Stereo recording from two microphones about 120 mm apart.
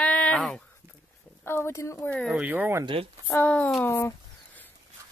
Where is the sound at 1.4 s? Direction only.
20° left (ahead or behind).